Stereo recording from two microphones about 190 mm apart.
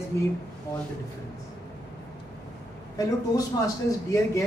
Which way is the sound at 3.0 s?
20° left (ahead or behind).